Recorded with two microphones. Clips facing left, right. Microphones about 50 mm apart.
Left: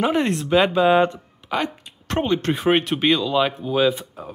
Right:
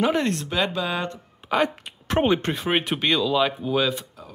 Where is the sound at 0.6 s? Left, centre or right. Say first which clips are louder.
Left 12 dB; left.